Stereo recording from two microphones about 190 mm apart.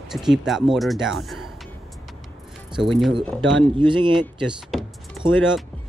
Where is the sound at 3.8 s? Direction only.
25° right (ahead or behind).